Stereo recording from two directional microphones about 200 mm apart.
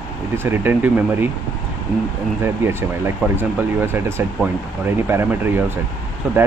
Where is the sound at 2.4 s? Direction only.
10° right (ahead or behind).